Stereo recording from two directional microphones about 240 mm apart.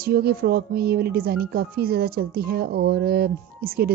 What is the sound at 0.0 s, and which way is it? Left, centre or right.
Speech, right.